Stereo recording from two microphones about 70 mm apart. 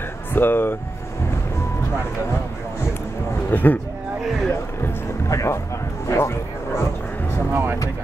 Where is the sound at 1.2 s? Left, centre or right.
Left.